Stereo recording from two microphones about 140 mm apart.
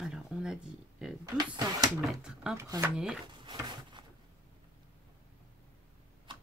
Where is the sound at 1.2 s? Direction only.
25° right (ahead or behind).